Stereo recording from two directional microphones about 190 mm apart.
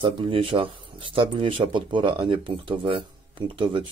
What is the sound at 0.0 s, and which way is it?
Speech, 30° right (ahead or behind).